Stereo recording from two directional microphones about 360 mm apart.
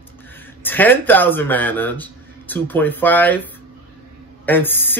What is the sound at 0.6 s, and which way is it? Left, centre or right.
Speech, centre.